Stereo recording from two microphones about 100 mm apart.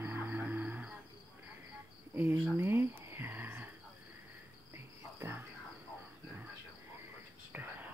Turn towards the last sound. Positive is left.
turn(degrees=-20)  # may be behind; listen again after turning